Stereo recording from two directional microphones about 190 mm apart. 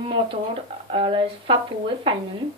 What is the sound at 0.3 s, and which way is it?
Speech, 30° right (ahead or behind).